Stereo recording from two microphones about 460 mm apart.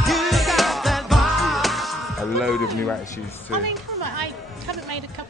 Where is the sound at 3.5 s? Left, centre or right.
Right.